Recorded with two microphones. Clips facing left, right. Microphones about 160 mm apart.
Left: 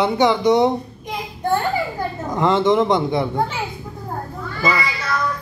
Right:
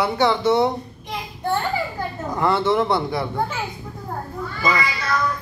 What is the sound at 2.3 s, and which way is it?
Speech, 20° left (ahead or behind).